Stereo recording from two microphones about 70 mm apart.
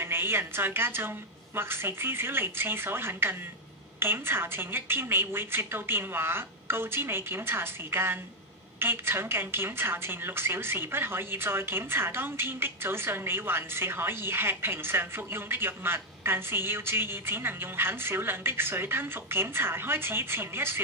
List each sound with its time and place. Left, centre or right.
0.0 s a woman's voice: right